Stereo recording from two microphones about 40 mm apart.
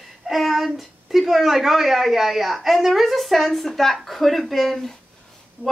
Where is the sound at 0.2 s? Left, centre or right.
Centre.